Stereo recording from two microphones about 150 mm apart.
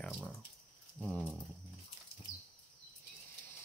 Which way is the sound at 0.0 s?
5° left (ahead or behind).